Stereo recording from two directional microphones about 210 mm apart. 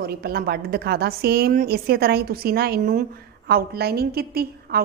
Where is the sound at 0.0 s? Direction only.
50° right (ahead or behind).